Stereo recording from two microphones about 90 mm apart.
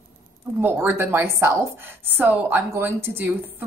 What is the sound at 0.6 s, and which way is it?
A woman's voice, 25° right (ahead or behind).